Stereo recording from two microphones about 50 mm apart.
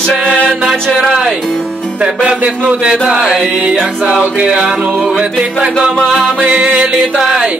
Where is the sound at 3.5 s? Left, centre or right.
Right.